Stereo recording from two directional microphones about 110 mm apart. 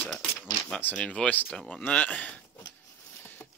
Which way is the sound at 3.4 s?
20° left (ahead or behind).